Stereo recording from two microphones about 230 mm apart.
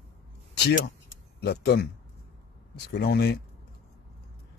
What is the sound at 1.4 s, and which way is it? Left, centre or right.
Speech, left.